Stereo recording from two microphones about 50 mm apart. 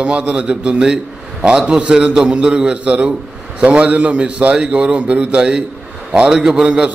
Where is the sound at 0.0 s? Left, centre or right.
Right.